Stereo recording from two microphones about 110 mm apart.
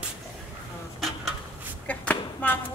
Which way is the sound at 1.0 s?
Centre (ahead or behind).